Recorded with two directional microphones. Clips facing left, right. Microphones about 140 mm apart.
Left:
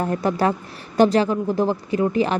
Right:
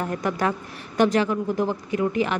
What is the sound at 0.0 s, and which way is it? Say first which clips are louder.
Speech: left 4 dB; 35° left (ahead or behind).